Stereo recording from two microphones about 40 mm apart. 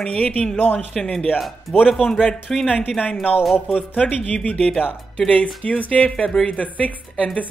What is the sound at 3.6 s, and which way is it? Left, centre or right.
Speech, left.